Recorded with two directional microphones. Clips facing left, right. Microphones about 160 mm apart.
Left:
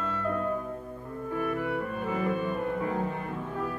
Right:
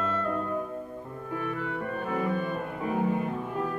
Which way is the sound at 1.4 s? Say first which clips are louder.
Left 3 dB; 10° left (ahead or behind).